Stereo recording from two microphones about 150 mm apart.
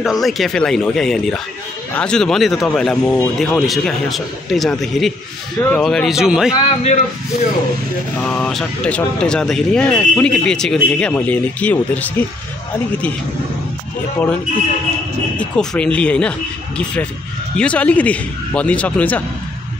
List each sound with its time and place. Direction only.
0.0 s speech: centre (ahead or behind)
6.6 s a man's voice: 45° left (ahead or behind)
8.2 s speech: 5° left (ahead or behind)
15.3 s speech: 5° left (ahead or behind)